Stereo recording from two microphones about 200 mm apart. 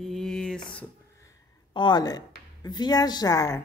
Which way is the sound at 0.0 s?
Centre (ahead or behind).